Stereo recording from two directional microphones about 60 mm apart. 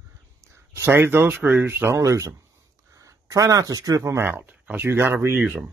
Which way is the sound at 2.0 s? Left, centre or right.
Right.